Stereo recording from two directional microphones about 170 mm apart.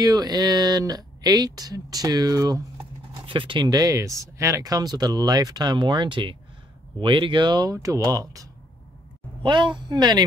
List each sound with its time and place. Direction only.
0.0 s speech: 20° right (ahead or behind)